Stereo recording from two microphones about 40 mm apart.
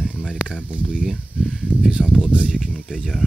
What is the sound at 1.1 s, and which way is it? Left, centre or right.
Speech, centre.